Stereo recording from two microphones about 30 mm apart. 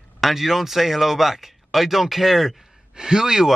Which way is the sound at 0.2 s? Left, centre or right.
Centre.